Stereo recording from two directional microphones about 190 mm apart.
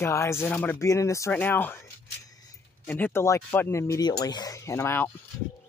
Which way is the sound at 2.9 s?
10° left (ahead or behind).